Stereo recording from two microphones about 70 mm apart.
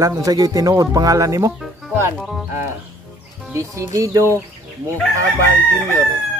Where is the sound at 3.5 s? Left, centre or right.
Right.